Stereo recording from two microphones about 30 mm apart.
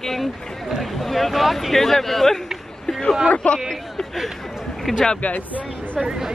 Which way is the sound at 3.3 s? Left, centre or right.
Left.